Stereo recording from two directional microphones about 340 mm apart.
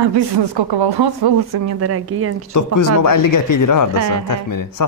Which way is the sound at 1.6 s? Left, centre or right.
Right.